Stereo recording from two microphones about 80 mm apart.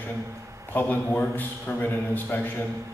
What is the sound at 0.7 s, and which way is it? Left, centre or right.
A man's voice, left.